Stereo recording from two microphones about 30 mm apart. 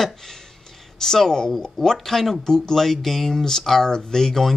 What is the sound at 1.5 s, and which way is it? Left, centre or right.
Speech, centre.